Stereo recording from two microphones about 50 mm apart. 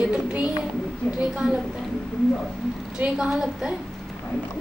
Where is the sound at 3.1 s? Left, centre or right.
Centre.